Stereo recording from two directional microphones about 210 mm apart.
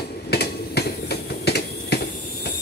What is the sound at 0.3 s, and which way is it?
Finger snapping, 50° left (ahead or behind).